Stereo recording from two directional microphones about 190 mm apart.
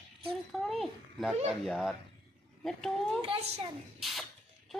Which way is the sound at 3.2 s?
30° right (ahead or behind).